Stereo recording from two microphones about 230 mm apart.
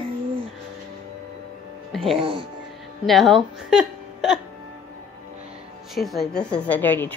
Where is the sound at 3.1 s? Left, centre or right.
Centre.